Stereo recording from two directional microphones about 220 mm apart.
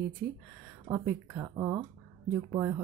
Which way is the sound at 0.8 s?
15° right (ahead or behind).